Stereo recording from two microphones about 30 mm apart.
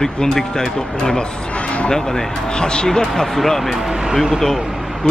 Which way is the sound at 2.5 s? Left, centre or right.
Left.